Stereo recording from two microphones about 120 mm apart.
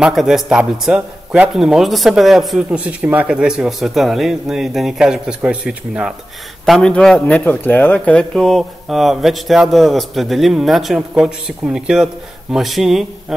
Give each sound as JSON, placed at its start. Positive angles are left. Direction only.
{"t": 0.0, "sound": "a man's voice", "side_deg": -5}
{"t": 6.6, "sound": "a man's voice", "side_deg": 5}